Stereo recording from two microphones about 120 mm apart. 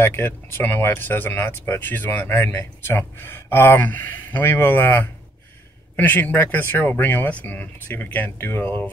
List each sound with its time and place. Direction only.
0.0 s speech: 20° left (ahead or behind)